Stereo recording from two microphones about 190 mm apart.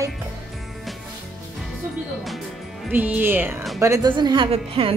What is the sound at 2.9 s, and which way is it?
Music, 10° right (ahead or behind).